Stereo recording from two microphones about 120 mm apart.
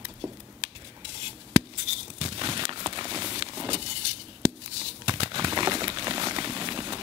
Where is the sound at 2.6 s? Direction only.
45° right (ahead or behind).